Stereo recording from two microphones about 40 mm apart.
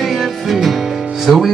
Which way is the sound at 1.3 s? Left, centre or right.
Centre.